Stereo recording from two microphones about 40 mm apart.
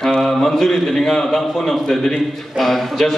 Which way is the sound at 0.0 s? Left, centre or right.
Centre.